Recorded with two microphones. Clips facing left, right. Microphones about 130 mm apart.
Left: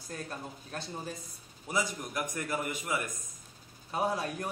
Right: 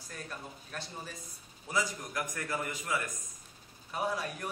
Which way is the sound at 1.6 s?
20° left (ahead or behind).